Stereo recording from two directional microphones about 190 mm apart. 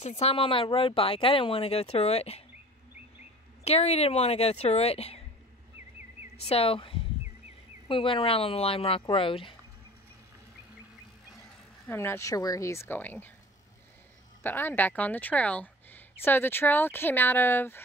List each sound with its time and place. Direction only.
0.2 s speech: 30° left (ahead or behind)
3.6 s speech: 35° left (ahead or behind)
6.3 s speech: 30° left (ahead or behind)
11.9 s speech: 10° left (ahead or behind)
14.4 s speech: 10° left (ahead or behind)